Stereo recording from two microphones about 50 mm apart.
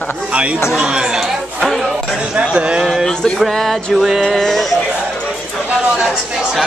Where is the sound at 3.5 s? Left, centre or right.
Centre.